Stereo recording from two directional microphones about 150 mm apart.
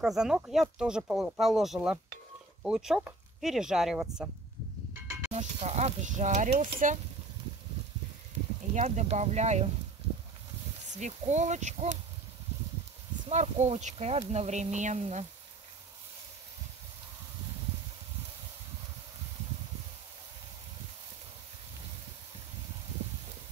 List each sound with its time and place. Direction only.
0.0 s speech: 5° right (ahead or behind)
5.3 s speech: 50° right (ahead or behind)
8.7 s speech: 50° right (ahead or behind)
10.9 s speech: 50° right (ahead or behind)
13.3 s speech: 50° right (ahead or behind)